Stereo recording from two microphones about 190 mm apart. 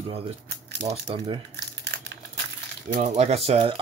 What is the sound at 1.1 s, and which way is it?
Speech, 30° right (ahead or behind).